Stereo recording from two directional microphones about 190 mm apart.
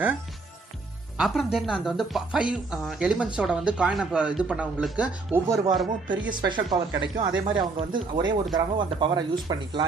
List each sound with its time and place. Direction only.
1.1 s speech: centre (ahead or behind); by 9.8 s 25° right (ahead or behind)